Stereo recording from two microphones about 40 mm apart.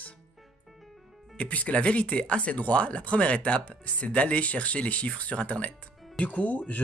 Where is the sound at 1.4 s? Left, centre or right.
Left.